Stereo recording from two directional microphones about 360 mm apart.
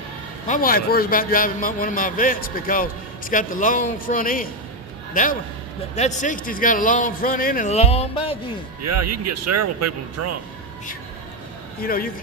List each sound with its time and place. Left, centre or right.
0.5 s a man's voice: left
8.8 s speech: right
11.8 s a man's voice: left